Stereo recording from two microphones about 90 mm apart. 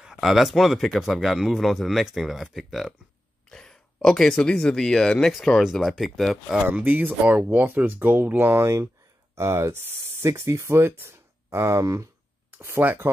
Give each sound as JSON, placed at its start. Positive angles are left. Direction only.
{"t": 0.0, "sound": "speech", "side_deg": -5}
{"t": 6.6, "sound": "speech", "side_deg": -20}